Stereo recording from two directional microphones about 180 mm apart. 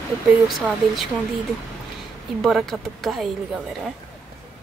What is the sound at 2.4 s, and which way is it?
Speech, centre (ahead or behind).